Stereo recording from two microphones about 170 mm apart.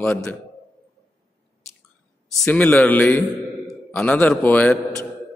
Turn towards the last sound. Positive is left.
turn(degrees=10)  # may be behind; listen again after turning